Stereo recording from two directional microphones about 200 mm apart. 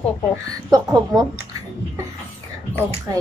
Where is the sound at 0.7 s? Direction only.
20° right (ahead or behind).